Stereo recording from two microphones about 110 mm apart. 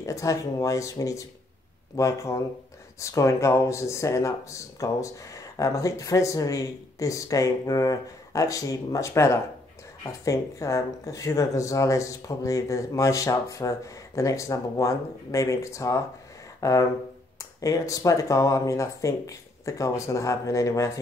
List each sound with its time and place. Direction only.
0.0 s speech: 30° left (ahead or behind)
16.6 s a sound: 30° left (ahead or behind)
17.4 s speech: 30° left (ahead or behind)